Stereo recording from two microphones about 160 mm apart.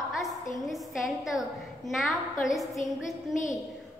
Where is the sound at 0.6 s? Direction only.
Centre (ahead or behind).